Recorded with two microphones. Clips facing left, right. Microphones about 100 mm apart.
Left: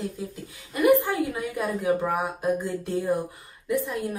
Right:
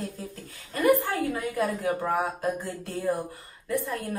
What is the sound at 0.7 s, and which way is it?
A woman's voice, 15° left (ahead or behind).